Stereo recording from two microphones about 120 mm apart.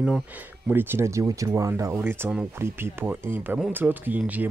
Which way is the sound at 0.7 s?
20° right (ahead or behind).